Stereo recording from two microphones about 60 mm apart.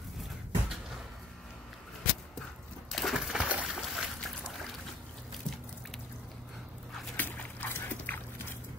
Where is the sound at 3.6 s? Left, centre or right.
Centre.